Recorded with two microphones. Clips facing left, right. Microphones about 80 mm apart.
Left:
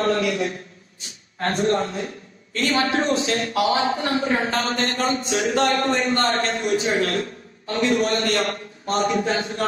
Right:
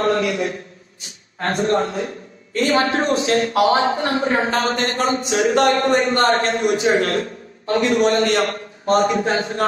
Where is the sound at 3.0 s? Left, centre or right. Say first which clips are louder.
Right 4 dB; right.